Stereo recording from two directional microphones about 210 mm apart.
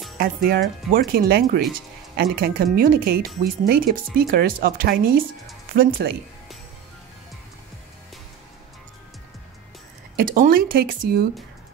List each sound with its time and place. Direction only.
0.2 s speech: 45° right (ahead or behind)
10.1 s speech: 40° right (ahead or behind)